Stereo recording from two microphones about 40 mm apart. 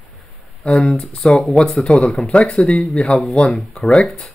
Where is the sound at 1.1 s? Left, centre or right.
Centre.